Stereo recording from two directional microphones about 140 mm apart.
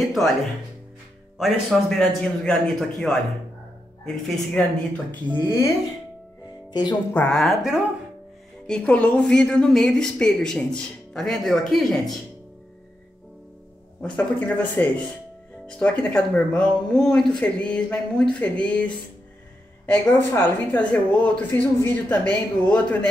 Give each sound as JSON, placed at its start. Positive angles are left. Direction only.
{"t": 0.0, "sound": "a woman's voice", "side_deg": 0}
{"t": 1.4, "sound": "a woman's voice", "side_deg": 5}
{"t": 4.6, "sound": "speech", "side_deg": 10}
{"t": 6.7, "sound": "speech", "side_deg": 30}
{"t": 7.2, "sound": "a woman's voice", "side_deg": 5}
{"t": 14.0, "sound": "speech", "side_deg": 10}